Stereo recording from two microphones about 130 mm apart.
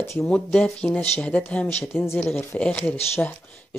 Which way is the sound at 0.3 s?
10° left (ahead or behind).